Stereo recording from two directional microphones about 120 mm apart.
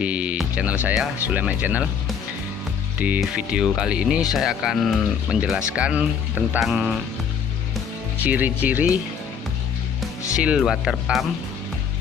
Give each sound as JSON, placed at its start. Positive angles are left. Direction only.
{"t": 0.0, "sound": "speech", "side_deg": -10}
{"t": 0.4, "sound": "music", "side_deg": -10}
{"t": 0.8, "sound": "speech", "side_deg": -15}
{"t": 3.2, "sound": "speech", "side_deg": -5}
{"t": 8.2, "sound": "speech", "side_deg": -15}
{"t": 10.3, "sound": "speech", "side_deg": -10}